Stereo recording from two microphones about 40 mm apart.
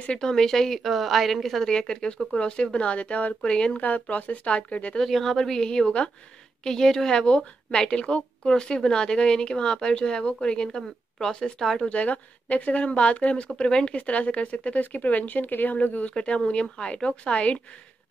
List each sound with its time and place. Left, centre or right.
0.2 s a woman's voice: centre
0.9 s a woman's voice: centre
1.6 s a woman's voice: centre; by 3.3 s left
3.4 s a woman's voice: left
3.8 s speech: left
4.9 s a woman's voice: centre
11.9 s speech: left